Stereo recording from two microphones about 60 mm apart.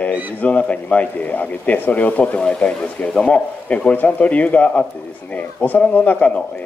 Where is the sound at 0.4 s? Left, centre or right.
Left.